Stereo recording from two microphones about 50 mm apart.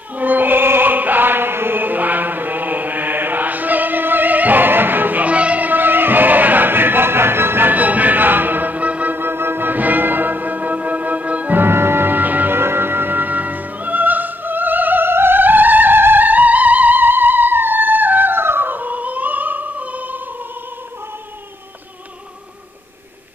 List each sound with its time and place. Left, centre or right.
0.1 s music: right
7.7 s music: right
9.2 s music: right
11.5 s music: right
12.5 s opera: right